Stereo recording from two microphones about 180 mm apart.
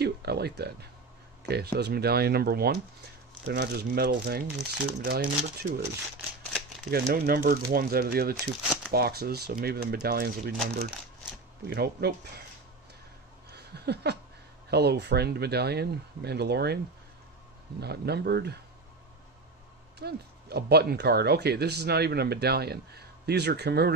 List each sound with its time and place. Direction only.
0.0 s a sound: 65° right (ahead or behind)
1.5 s speech: 60° right (ahead or behind)
6.9 s speech: 55° right (ahead or behind)
11.6 s speech: 60° right (ahead or behind)
13.5 s a sound: 65° right (ahead or behind)
14.7 s speech: 65° right (ahead or behind)
20.0 s speech: 65° right (ahead or behind)